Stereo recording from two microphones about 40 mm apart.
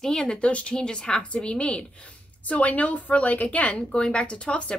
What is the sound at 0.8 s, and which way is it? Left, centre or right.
A woman's voice, left.